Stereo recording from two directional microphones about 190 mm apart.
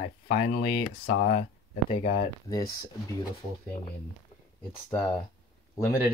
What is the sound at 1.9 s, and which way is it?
Speech, 35° left (ahead or behind).